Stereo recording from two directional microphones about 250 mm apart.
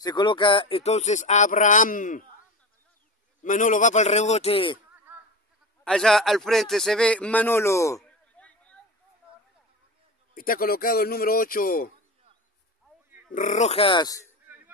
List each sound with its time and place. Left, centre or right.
0.0 s speech: centre
3.4 s speech: left
5.9 s speech: centre
10.3 s a man's voice: left
13.3 s speech: left; by 14.3 s centre